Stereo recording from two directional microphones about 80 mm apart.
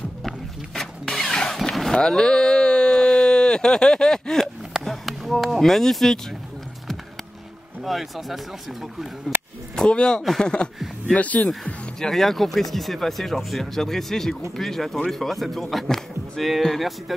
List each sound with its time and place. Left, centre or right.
0.7 s vehicle: centre
4.7 s a sound: centre
7.8 s speech: centre
9.3 s a sound: right
9.8 s speech: centre
11.6 s speech: centre